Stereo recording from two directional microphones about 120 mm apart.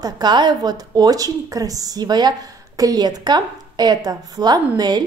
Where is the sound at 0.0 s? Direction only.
35° right (ahead or behind).